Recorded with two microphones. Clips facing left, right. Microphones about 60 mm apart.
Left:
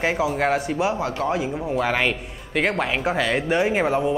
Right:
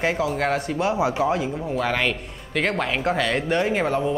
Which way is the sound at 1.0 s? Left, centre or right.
Centre.